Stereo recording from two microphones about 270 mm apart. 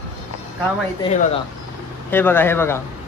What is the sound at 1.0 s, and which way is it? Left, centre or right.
Speech, left.